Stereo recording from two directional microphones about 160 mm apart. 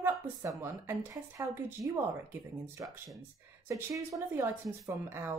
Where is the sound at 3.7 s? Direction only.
20° right (ahead or behind).